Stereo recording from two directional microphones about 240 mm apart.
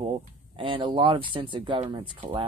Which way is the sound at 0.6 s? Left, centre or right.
Right.